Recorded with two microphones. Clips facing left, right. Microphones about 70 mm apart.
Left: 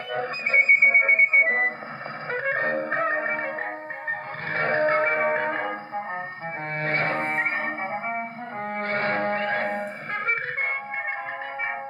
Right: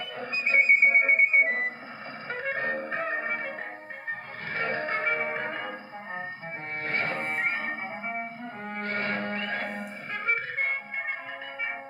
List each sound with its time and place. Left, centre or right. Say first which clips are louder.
0.1 s music: left 3 dB; left